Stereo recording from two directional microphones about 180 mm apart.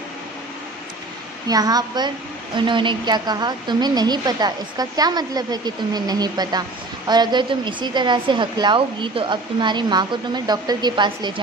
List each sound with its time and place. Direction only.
1.5 s a woman's voice: 20° right (ahead or behind)